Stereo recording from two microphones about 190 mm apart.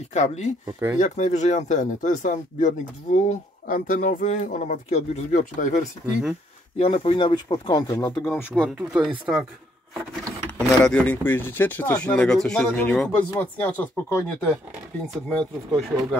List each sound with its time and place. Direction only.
0.1 s speech: 35° left (ahead or behind)
6.8 s speech: 30° left (ahead or behind)
8.2 s speech: 10° left (ahead or behind)
8.6 s speech: 5° right (ahead or behind)
10.8 s speech: 5° left (ahead or behind)